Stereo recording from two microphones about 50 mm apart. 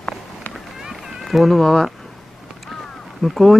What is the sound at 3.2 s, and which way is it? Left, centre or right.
Speech, centre.